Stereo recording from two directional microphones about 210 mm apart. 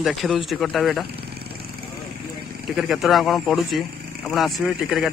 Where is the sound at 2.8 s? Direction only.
Centre (ahead or behind).